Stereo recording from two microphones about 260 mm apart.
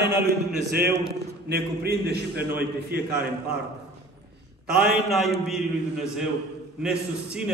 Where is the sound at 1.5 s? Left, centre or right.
Right.